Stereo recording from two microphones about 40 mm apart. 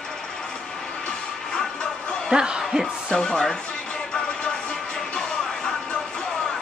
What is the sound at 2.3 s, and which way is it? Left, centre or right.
Speech, centre.